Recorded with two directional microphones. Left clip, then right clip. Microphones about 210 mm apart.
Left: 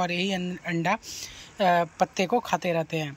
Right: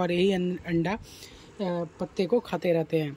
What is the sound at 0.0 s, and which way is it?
Speech, 15° right (ahead or behind).